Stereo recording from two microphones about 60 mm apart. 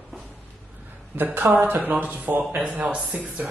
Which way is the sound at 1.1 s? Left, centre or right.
Right.